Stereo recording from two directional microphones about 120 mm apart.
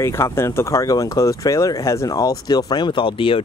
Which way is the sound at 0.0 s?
25° left (ahead or behind).